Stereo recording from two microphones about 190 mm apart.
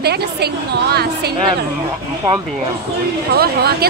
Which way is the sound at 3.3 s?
55° right (ahead or behind).